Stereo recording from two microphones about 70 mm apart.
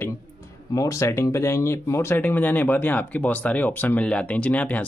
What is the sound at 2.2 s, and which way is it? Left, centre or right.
Speech, left.